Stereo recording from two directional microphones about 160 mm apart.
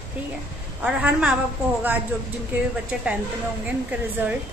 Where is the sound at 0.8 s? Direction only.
5° right (ahead or behind).